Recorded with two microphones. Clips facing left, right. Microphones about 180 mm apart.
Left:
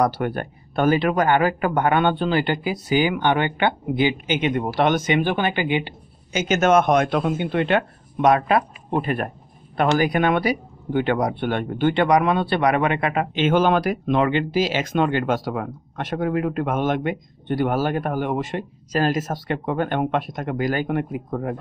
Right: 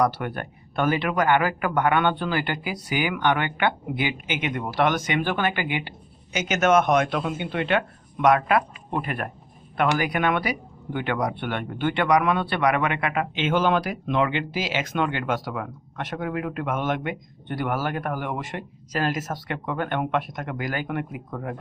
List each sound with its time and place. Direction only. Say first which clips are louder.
0.0 s speech: left 3 dB; 35° left (ahead or behind)